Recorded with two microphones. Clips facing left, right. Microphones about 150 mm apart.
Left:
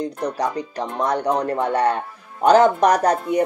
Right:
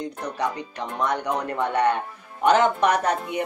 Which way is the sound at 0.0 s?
35° left (ahead or behind).